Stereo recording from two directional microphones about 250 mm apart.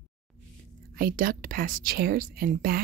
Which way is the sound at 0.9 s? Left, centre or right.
Right.